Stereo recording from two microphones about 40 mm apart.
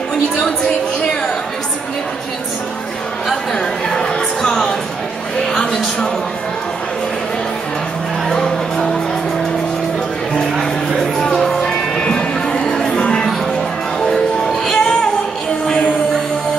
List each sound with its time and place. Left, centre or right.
3.3 s a sound: centre
8.3 s music: centre
10.6 s music: centre; by 13.2 s left
14.0 s music: centre